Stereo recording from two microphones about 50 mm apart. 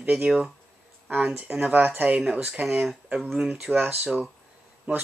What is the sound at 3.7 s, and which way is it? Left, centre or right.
Speech, centre.